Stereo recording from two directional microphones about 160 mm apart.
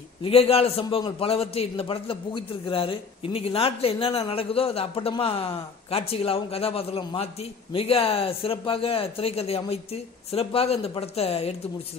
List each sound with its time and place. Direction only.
0.2 s a man's voice: 35° left (ahead or behind)